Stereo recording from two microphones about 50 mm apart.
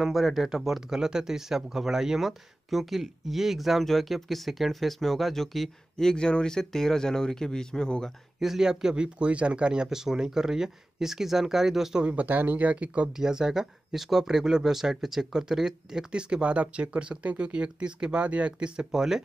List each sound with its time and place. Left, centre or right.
0.0 s speech: centre
8.4 s speech: centre
9.8 s speech: centre
12.0 s speech: right
13.1 s speech: centre
18.9 s speech: centre